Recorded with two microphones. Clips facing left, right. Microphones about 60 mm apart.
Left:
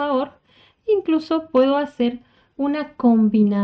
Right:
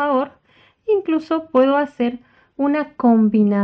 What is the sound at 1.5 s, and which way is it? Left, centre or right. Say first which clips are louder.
Speech: right 2 dB; right.